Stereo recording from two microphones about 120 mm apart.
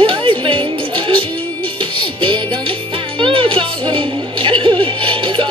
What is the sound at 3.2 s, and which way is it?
Music, 45° right (ahead or behind).